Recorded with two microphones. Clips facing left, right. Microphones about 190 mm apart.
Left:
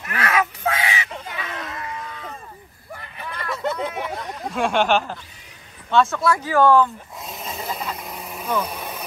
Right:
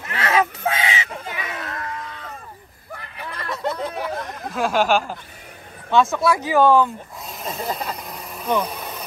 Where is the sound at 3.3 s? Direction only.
Centre (ahead or behind).